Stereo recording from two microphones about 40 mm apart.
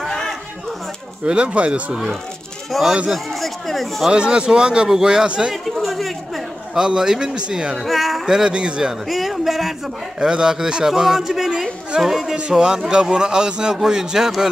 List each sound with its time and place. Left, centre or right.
0.1 s chatter: centre
1.2 s a man's voice: right
2.7 s speech: centre
4.1 s a man's voice: right
5.5 s chatter: centre
6.7 s a man's voice: centre
7.7 s speech: centre
8.3 s a man's voice: centre
9.0 s a man's voice: centre
12.4 s a man's voice: right